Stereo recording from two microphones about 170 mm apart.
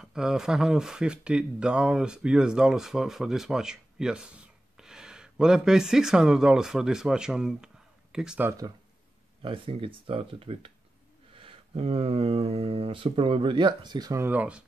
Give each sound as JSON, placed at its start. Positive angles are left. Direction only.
{"t": 0.0, "sound": "speech", "side_deg": -5}
{"t": 8.5, "sound": "speech", "side_deg": -20}
{"t": 9.4, "sound": "speech", "side_deg": -30}